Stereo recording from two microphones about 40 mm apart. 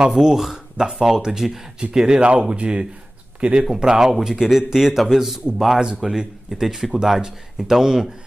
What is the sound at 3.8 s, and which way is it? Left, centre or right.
A man's voice, centre.